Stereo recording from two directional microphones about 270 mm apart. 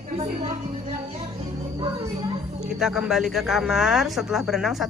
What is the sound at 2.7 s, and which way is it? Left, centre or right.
Speech, centre.